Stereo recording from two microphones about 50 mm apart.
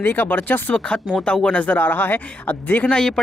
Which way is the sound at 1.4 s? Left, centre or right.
Left.